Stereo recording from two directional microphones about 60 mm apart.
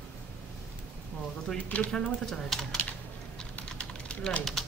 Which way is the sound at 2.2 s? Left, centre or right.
Centre.